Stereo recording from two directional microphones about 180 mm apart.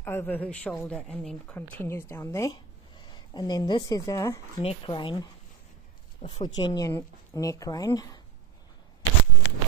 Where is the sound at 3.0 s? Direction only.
25° left (ahead or behind).